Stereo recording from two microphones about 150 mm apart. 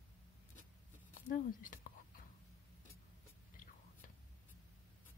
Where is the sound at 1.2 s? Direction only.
65° left (ahead or behind).